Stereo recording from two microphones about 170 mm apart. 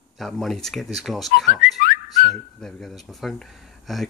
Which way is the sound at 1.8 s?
60° left (ahead or behind).